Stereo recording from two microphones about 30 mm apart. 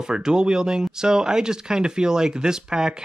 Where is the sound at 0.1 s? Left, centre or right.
Right.